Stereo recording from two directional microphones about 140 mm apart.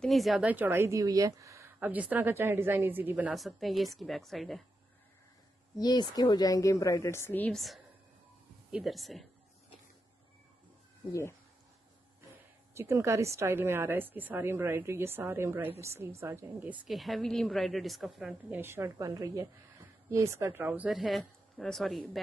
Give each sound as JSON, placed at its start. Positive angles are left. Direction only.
{"t": 0.0, "sound": "a woman's voice", "side_deg": 0}
{"t": 0.5, "sound": "speech", "side_deg": -15}
{"t": 1.8, "sound": "a woman's voice", "side_deg": -10}
{"t": 3.3, "sound": "speech", "side_deg": 0}
{"t": 5.8, "sound": "a woman's voice", "side_deg": 30}
{"t": 7.5, "sound": "speech", "side_deg": 0}
{"t": 11.1, "sound": "a woman's voice", "side_deg": 20}
{"t": 12.7, "sound": "a woman's voice", "side_deg": -20}
{"t": 16.8, "sound": "speech", "side_deg": 0}
{"t": 18.5, "sound": "speech", "side_deg": -15}